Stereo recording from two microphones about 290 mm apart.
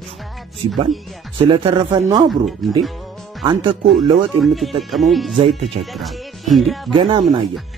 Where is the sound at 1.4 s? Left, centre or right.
Centre.